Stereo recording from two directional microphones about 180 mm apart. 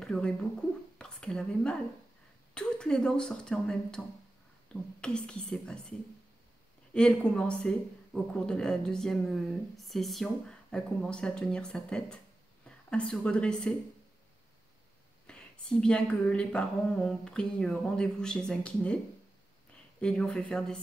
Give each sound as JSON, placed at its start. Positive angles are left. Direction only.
{"t": 0.0, "sound": "a woman's voice", "side_deg": 5}
{"t": 5.0, "sound": "a woman's voice", "side_deg": 5}
{"t": 15.2, "sound": "a woman's voice", "side_deg": 5}